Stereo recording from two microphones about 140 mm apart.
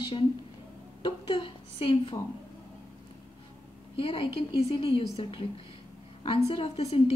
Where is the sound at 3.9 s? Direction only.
40° left (ahead or behind).